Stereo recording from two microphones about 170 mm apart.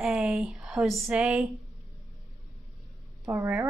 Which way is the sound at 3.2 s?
15° right (ahead or behind).